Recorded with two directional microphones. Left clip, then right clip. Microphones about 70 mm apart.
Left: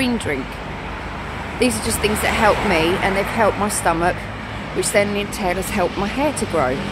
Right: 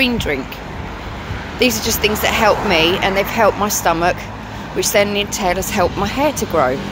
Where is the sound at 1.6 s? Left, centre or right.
Centre.